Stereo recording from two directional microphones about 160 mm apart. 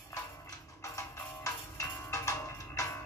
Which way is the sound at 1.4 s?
20° left (ahead or behind).